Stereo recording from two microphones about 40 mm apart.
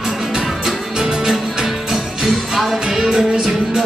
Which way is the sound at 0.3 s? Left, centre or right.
Centre.